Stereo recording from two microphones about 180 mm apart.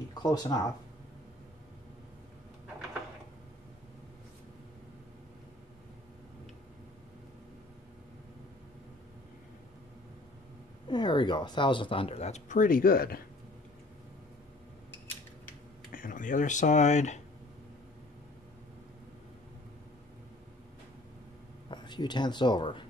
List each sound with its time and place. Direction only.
0.2 s speech: 20° left (ahead or behind)
10.9 s speech: 25° left (ahead or behind); by 13.2 s 55° left (ahead or behind)
15.9 s speech: 50° left (ahead or behind)
21.6 s speech: 25° left (ahead or behind)